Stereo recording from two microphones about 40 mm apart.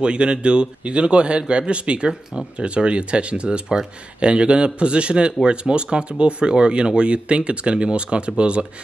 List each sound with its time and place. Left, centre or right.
0.0 s speech: right